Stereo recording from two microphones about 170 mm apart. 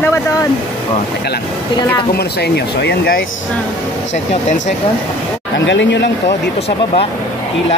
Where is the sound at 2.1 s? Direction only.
70° left (ahead or behind).